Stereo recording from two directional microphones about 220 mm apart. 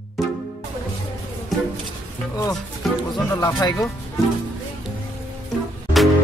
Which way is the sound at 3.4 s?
20° left (ahead or behind).